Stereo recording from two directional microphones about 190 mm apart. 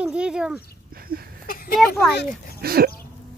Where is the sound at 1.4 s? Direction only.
50° left (ahead or behind).